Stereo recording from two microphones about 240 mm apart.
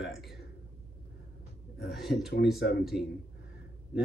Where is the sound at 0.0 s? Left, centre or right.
Centre.